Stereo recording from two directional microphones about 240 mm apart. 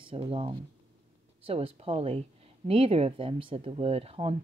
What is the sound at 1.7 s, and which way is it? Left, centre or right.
Speech, right.